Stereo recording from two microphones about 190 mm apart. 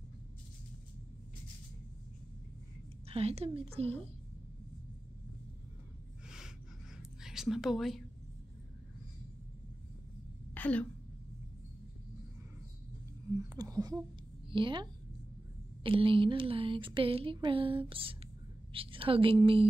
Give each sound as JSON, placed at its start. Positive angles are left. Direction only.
{"t": 3.1, "sound": "a woman's voice", "side_deg": -35}
{"t": 6.2, "sound": "gasp", "side_deg": -5}
{"t": 7.0, "sound": "whispering", "side_deg": 0}
{"t": 10.5, "sound": "speech", "side_deg": 10}
{"t": 13.6, "sound": "a woman's voice", "side_deg": -20}